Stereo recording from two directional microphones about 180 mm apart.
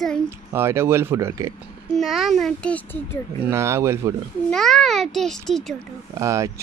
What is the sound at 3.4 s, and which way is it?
Speech, 15° right (ahead or behind).